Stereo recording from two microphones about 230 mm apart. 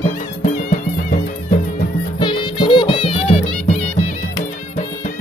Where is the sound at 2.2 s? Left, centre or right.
Left.